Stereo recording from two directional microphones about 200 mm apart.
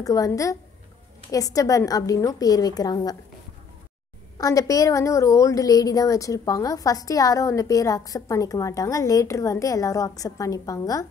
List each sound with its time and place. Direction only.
0.0 s a woman's voice: 15° left (ahead or behind)
4.4 s a woman's voice: 15° left (ahead or behind)